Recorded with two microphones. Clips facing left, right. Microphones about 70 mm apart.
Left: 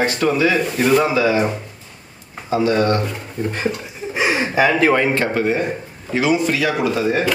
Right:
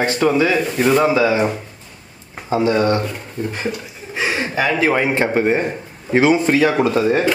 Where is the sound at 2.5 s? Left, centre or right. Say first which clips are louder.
Right 1 dB; right.